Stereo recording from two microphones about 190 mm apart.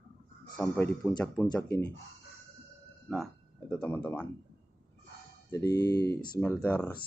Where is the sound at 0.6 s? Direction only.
10° left (ahead or behind).